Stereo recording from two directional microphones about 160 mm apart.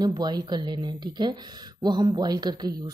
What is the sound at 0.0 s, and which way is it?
Speech, 25° right (ahead or behind).